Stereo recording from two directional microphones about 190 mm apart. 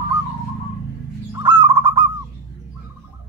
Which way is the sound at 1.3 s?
25° right (ahead or behind).